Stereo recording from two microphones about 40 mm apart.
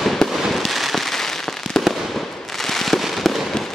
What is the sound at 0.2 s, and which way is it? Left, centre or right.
Fireworks, centre.